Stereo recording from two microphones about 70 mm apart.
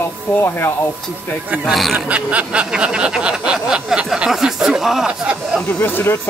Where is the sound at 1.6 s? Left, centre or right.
Centre.